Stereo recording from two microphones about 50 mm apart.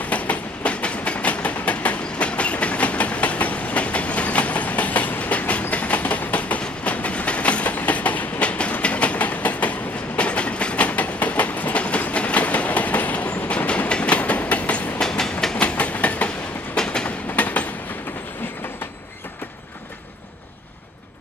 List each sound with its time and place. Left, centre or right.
0.0 s train: left
15.0 s train: centre
15.5 s train: left
16.7 s train: centre
17.4 s train: left